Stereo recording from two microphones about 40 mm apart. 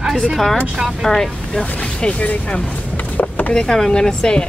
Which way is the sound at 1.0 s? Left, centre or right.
Centre.